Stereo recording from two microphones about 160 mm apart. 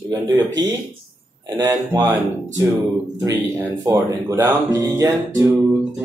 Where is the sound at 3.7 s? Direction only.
20° right (ahead or behind).